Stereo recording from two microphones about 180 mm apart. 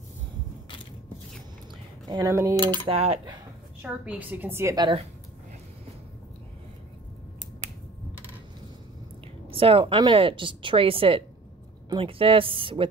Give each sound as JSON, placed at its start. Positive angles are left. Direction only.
{"t": 2.0, "sound": "speech", "side_deg": -20}
{"t": 2.7, "sound": "a woman's voice", "side_deg": -30}
{"t": 3.8, "sound": "a woman's voice", "side_deg": -10}
{"t": 9.5, "sound": "a woman's voice", "side_deg": -30}